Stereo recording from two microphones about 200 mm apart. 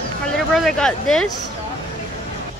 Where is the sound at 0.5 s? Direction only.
Centre (ahead or behind).